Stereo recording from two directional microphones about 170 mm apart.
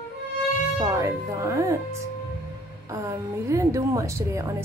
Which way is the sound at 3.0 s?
20° right (ahead or behind).